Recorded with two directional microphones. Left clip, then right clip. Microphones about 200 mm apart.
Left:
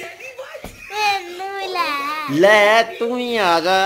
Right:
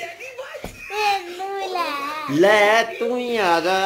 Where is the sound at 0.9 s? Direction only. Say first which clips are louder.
Left 2 dB; 25° right (ahead or behind).